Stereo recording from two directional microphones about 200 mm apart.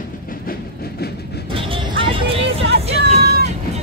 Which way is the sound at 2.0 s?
25° right (ahead or behind).